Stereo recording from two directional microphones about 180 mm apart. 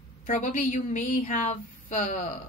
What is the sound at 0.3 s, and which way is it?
A woman's voice, 45° left (ahead or behind).